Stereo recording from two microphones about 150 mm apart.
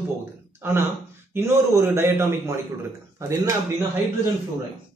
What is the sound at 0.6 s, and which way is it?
A man's voice, 15° right (ahead or behind).